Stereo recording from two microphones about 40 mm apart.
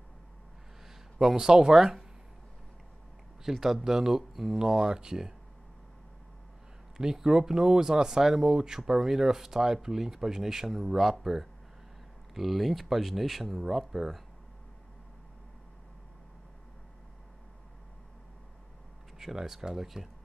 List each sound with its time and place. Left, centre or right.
1.2 s speech: centre
3.4 s speech: centre
7.0 s speech: centre
19.1 s speech: centre